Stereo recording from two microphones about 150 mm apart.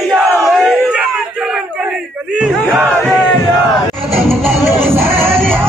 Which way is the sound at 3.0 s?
Centre (ahead or behind).